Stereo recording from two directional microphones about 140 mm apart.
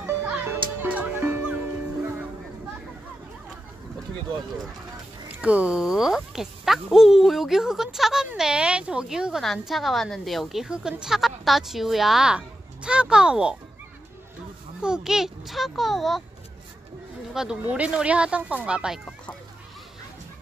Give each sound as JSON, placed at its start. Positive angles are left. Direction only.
{"t": 0.0, "sound": "music", "side_deg": -15}
{"t": 5.3, "sound": "speech", "side_deg": -10}
{"t": 14.8, "sound": "speech", "side_deg": -5}
{"t": 17.3, "sound": "speech", "side_deg": -5}